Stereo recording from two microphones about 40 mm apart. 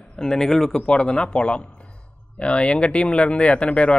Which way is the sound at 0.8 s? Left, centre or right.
Left.